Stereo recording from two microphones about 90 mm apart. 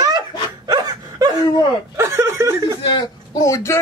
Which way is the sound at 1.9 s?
30° right (ahead or behind).